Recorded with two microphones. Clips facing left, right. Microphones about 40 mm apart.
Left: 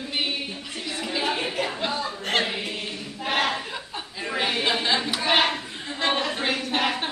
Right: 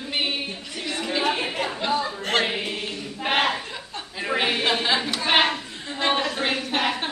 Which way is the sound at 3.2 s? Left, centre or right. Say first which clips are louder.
Right 2 dB; right.